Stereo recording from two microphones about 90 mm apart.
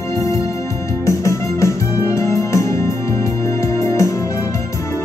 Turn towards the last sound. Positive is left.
turn(degrees=35)  # may be behind; listen again after turning